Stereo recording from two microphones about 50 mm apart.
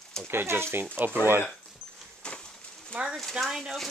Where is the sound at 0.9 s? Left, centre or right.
Right.